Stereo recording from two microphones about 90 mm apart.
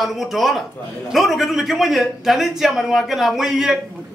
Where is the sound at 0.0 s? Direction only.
Centre (ahead or behind).